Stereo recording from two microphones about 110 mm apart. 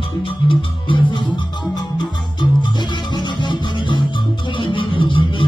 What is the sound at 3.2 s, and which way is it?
Music, 45° left (ahead or behind).